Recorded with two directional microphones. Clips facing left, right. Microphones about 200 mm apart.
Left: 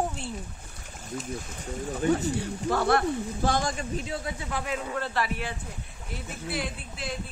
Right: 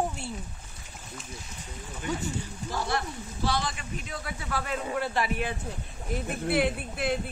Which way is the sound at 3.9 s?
25° left (ahead or behind).